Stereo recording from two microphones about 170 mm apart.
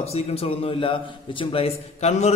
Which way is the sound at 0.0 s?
35° left (ahead or behind).